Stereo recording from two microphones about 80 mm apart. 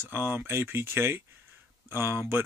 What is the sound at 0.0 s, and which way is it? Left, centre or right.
Speech, right.